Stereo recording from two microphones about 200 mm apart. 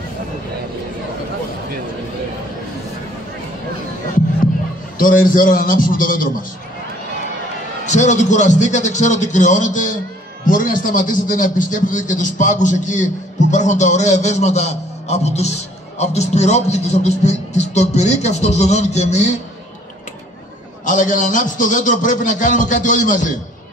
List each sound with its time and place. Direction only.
4.9 s a man's voice: 45° left (ahead or behind)
7.8 s a man's voice: 35° left (ahead or behind)
20.8 s a man's voice: 40° left (ahead or behind)